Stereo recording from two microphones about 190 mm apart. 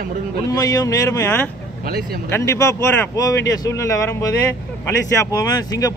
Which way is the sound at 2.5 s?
15° left (ahead or behind).